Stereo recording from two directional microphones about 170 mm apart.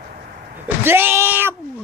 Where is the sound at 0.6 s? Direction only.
10° right (ahead or behind).